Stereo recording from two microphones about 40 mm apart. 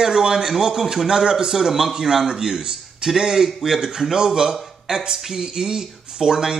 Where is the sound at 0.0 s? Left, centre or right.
Centre.